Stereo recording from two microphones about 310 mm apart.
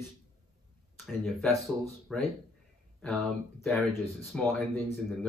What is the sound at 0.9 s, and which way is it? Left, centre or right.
Speech, centre.